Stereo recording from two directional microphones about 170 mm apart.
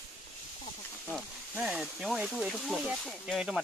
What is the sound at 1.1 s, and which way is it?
Speech, 5° right (ahead or behind).